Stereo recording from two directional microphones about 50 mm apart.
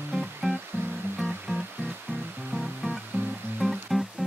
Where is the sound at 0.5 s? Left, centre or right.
Right.